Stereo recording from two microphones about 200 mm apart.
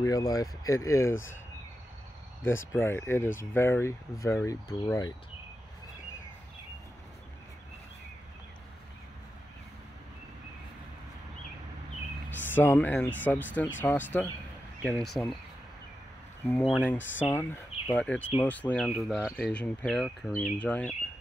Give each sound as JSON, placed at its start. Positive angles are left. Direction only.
{"t": 0.0, "sound": "speech", "side_deg": 15}
{"t": 2.4, "sound": "speech", "side_deg": 10}
{"t": 12.3, "sound": "speech", "side_deg": 10}
{"t": 16.4, "sound": "speech", "side_deg": 5}